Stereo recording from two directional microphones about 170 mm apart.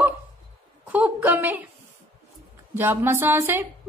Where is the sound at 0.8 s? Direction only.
10° right (ahead or behind).